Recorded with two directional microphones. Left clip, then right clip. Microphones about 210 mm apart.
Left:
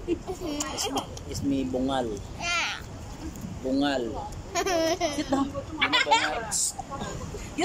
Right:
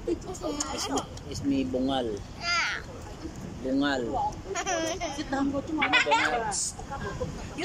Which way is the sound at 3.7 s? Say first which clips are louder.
Left 1 dB; centre (ahead or behind).